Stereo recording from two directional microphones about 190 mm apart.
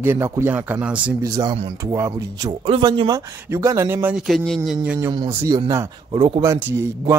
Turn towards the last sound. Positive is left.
turn(degrees=-15)  # may be behind; listen again after turning